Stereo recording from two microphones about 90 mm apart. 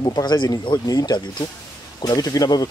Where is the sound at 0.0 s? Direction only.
50° left (ahead or behind).